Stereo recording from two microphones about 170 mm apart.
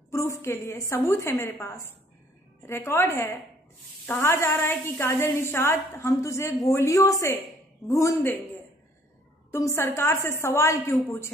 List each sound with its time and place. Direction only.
0.1 s a woman's voice: 15° left (ahead or behind)
9.5 s a woman's voice: 15° left (ahead or behind)